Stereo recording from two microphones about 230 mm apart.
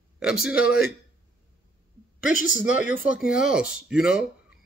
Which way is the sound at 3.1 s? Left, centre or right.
Centre.